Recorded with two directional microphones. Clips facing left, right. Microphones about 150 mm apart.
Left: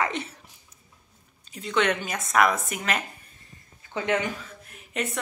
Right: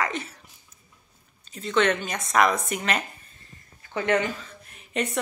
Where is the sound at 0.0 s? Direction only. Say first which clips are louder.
Left 1 dB; 25° left (ahead or behind).